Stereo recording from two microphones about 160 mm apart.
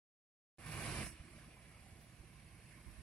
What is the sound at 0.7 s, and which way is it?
Vehicle, 5° left (ahead or behind).